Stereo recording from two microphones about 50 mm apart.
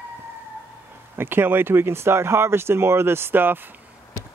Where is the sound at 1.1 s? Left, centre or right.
Right.